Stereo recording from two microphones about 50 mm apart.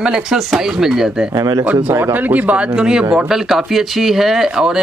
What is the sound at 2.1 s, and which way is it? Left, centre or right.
Speech, right.